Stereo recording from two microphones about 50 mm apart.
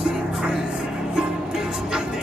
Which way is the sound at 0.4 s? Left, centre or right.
Centre.